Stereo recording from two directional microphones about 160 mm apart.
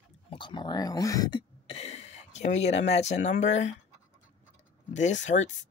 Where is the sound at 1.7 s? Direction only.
40° left (ahead or behind).